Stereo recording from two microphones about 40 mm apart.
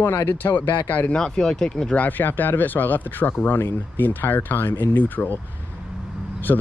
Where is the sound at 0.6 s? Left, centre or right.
Left.